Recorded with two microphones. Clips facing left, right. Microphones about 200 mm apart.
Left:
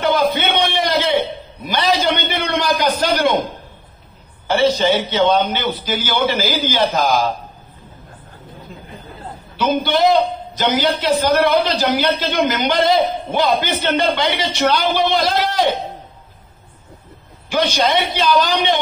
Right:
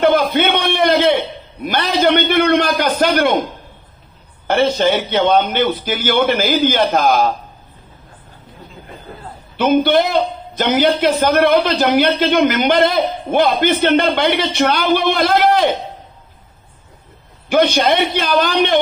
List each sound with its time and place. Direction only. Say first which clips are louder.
0.0 s a sound: right 3 dB; 55° right (ahead or behind)
1.7 s a man's voice: right 3 dB; 55° right (ahead or behind)
4.5 s a man's voice: right 1 dB; 55° right (ahead or behind)
9.6 s a man's voice: right 3 dB; 55° right (ahead or behind)
17.5 s a man's voice: right 4 dB; 60° right (ahead or behind)